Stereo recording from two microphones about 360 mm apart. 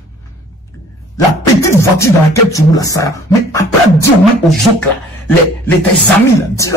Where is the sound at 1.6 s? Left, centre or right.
Centre.